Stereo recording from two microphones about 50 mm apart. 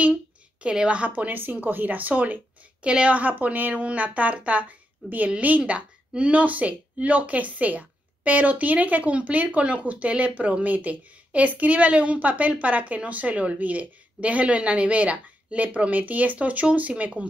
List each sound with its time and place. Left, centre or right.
0.0 s a woman's voice: right